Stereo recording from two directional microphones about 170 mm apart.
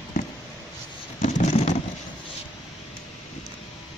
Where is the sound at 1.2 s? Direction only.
45° left (ahead or behind).